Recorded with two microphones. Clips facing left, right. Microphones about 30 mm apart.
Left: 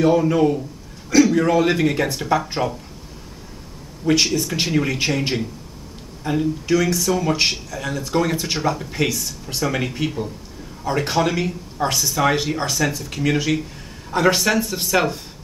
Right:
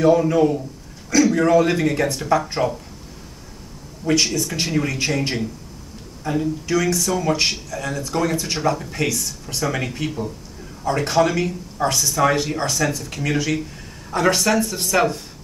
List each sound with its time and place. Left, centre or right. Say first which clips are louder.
0.0 s speech: right 1 dB; centre
4.0 s speech: left 1 dB; centre
6.7 s speech: left 1 dB; centre